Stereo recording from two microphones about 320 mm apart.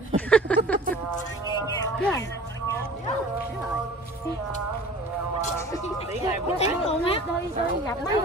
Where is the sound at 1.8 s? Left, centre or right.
Centre.